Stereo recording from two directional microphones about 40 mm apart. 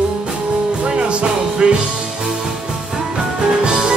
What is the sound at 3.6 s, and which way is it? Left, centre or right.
Music, centre.